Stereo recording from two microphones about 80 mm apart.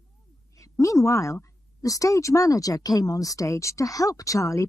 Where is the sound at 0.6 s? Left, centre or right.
Left.